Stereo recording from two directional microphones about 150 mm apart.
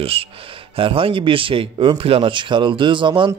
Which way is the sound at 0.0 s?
40° right (ahead or behind).